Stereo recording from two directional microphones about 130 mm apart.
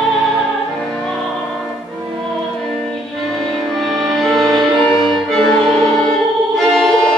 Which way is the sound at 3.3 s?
Centre (ahead or behind).